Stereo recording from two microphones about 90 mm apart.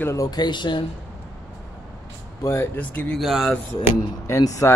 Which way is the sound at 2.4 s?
25° left (ahead or behind).